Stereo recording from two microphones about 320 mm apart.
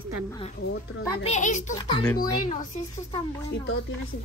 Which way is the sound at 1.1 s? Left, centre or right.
Left.